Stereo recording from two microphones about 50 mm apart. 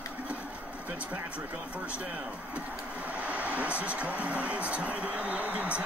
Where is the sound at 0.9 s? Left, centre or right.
Right.